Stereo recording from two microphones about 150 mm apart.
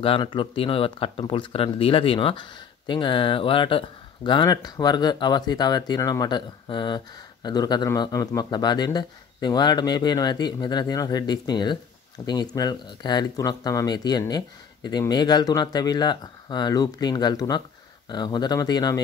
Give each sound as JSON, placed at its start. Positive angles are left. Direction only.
{"t": 0.0, "sound": "speech", "side_deg": 35}